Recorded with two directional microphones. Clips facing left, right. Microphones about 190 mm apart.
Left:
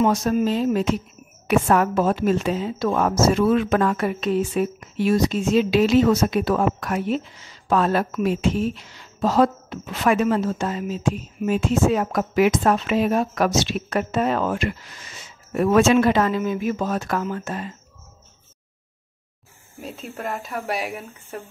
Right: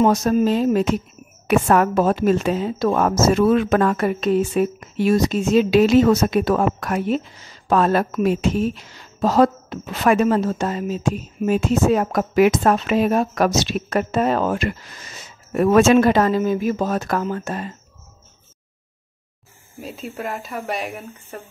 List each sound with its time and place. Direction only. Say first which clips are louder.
0.0 s a woman's voice: right 3 dB; 40° right (ahead or behind)
19.8 s speech: right 2 dB; centre (ahead or behind)